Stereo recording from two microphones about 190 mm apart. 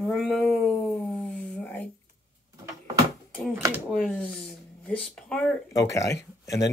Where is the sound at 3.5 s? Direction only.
15° right (ahead or behind).